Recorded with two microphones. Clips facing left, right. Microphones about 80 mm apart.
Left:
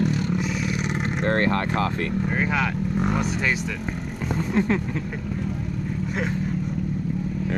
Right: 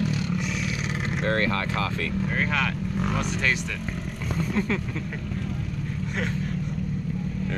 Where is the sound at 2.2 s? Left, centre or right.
Centre.